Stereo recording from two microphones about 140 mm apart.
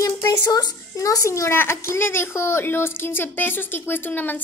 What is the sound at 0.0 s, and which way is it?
A child's voice, 30° left (ahead or behind).